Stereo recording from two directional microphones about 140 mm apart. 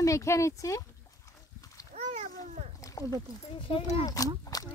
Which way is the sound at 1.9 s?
50° right (ahead or behind).